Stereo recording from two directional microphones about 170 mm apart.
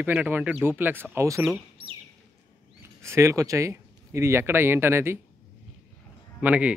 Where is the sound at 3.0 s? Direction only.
15° right (ahead or behind).